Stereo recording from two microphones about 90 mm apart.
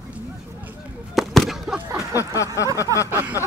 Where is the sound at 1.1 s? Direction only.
Centre (ahead or behind).